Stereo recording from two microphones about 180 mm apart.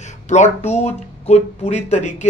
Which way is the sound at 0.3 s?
40° left (ahead or behind).